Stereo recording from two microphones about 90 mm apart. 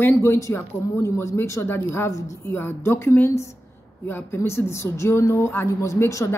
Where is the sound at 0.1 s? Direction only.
30° left (ahead or behind).